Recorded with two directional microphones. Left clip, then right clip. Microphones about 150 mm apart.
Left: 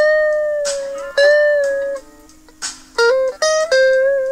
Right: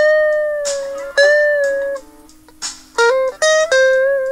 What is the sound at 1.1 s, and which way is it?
Music, 35° right (ahead or behind).